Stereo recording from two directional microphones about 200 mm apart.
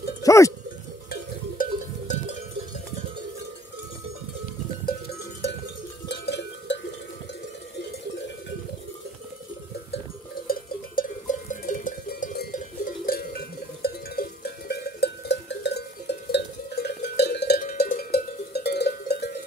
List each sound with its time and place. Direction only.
0.2 s speech: 15° left (ahead or behind)
1.6 s cowbell: 35° left (ahead or behind)
6.0 s cowbell: 60° left (ahead or behind)
10.4 s cowbell: 45° left (ahead or behind)